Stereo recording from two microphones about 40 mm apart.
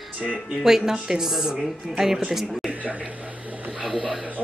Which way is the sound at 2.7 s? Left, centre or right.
Right.